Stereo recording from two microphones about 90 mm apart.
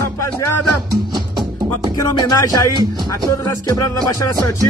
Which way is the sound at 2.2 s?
45° left (ahead or behind).